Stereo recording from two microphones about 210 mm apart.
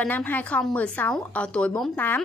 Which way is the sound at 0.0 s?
10° left (ahead or behind).